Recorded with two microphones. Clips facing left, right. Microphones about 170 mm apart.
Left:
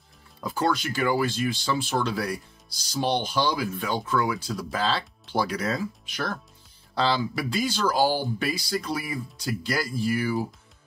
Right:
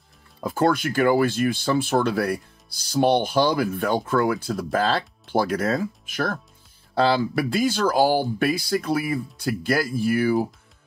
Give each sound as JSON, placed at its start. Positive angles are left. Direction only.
{"t": 0.4, "sound": "speech", "side_deg": -55}